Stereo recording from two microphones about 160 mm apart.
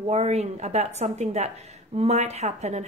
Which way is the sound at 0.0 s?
40° right (ahead or behind).